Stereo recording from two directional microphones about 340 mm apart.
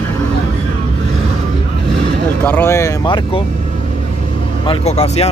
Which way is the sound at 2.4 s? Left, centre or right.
Centre.